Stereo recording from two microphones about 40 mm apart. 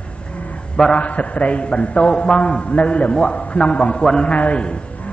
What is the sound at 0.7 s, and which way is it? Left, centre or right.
Speech, left.